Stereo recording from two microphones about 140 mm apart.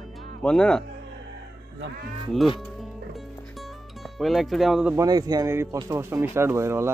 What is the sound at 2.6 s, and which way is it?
Music, centre (ahead or behind).